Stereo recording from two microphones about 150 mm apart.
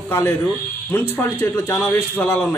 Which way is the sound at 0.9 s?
15° left (ahead or behind).